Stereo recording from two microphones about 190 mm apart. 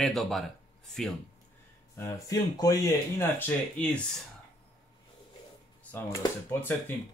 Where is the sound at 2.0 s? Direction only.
15° left (ahead or behind).